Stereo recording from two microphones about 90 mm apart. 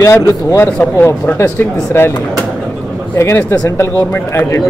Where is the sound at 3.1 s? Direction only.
25° left (ahead or behind).